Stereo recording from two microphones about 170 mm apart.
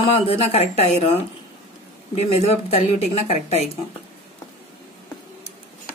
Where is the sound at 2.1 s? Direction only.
40° left (ahead or behind).